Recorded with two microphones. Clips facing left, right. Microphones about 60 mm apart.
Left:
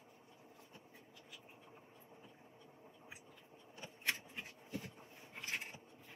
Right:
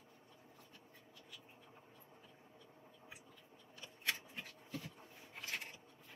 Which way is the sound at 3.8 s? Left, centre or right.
Left.